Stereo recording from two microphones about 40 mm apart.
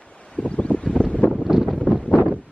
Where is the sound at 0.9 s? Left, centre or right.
Left.